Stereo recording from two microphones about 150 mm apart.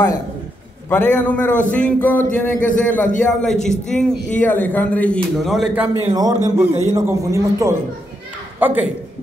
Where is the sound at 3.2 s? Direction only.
5° left (ahead or behind).